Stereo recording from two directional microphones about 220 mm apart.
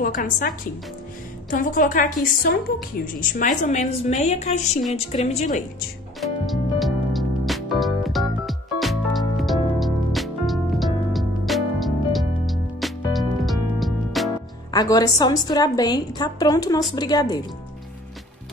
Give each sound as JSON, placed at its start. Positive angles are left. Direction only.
{"t": 0.0, "sound": "a woman's voice", "side_deg": 40}
{"t": 6.2, "sound": "music", "side_deg": 0}
{"t": 14.7, "sound": "a woman's voice", "side_deg": 15}